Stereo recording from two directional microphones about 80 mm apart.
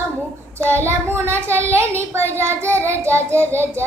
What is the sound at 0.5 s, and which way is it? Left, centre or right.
Child singing, right.